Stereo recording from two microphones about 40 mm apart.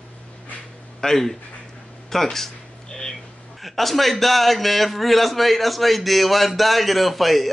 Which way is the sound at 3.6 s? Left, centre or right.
Centre.